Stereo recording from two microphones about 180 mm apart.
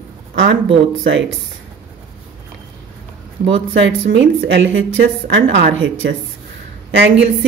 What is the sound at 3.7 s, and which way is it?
A woman's voice, 90° right.